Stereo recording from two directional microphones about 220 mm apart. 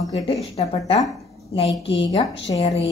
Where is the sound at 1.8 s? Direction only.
25° left (ahead or behind).